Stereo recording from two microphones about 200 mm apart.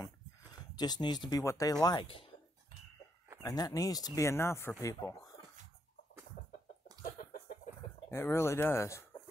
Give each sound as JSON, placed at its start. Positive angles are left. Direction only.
{"t": 0.7, "sound": "speech", "side_deg": 20}
{"t": 3.4, "sound": "speech", "side_deg": 20}
{"t": 8.1, "sound": "speech", "side_deg": 10}